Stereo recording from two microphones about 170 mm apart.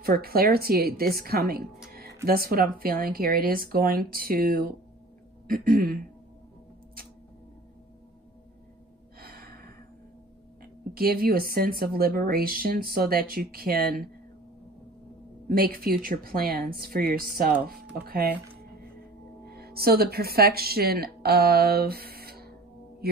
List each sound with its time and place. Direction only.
0.0 s speech: 60° right (ahead or behind)
1.9 s music: 65° right (ahead or behind)
2.2 s speech: 60° right (ahead or behind)
9.2 s gasp: 65° right (ahead or behind)
10.6 s speech: 60° right (ahead or behind)
15.4 s speech: 60° right (ahead or behind)
19.5 s speech: 65° right (ahead or behind)